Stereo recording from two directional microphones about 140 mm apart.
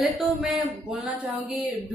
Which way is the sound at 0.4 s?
Centre (ahead or behind).